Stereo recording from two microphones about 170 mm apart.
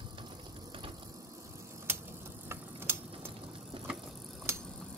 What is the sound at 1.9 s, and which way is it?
Mechanisms, 15° right (ahead or behind).